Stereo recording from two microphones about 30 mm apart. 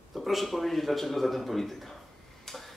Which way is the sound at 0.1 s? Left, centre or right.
Centre.